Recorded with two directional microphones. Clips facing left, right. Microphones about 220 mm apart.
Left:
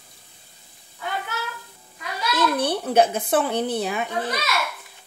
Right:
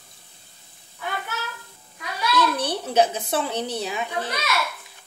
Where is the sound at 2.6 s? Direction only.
55° left (ahead or behind).